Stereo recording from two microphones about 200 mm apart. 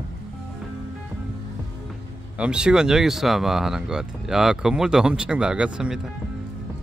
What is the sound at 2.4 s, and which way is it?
Speech, 5° right (ahead or behind).